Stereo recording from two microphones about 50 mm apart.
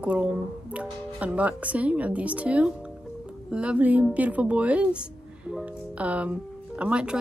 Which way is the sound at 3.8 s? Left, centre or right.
Right.